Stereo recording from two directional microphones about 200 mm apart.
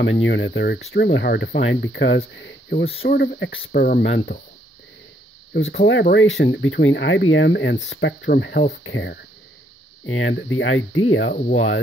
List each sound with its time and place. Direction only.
0.0 s speech: 70° left (ahead or behind)
3.1 s speech: 50° left (ahead or behind)
4.0 s speech: 65° left (ahead or behind)
5.7 s speech: 65° left (ahead or behind)